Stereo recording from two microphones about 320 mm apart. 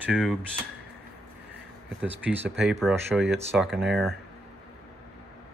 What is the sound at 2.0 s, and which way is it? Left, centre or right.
Speech, centre.